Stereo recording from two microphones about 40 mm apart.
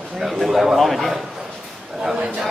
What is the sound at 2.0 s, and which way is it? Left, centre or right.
Speech, centre.